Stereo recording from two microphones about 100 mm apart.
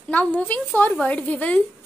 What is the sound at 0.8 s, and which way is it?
Speech, 15° left (ahead or behind).